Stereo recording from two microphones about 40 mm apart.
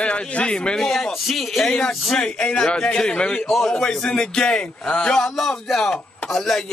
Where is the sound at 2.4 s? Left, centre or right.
Left.